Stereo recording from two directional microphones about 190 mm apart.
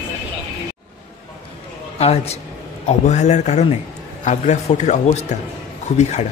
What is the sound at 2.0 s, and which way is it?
Speech, 35° left (ahead or behind).